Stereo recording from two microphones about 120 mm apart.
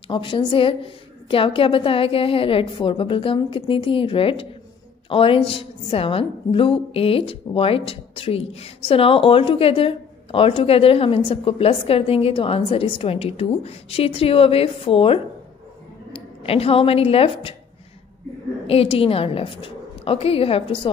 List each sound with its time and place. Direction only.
0.1 s a woman's voice: 45° left (ahead or behind)
16.4 s a woman's voice: 55° left (ahead or behind)
18.7 s a woman's voice: 55° left (ahead or behind)